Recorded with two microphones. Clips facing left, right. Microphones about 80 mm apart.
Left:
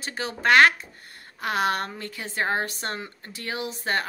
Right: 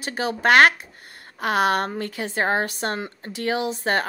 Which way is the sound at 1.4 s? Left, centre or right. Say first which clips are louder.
Right 4 dB; right.